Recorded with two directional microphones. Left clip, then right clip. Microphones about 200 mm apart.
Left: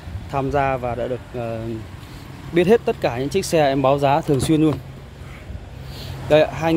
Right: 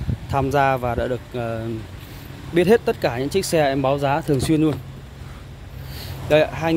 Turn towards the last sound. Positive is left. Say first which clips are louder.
# left 2 dB
turn(degrees=10)  # may be behind; listen again after turning